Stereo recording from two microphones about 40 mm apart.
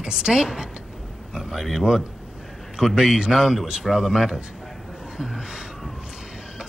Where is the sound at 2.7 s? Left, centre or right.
Centre.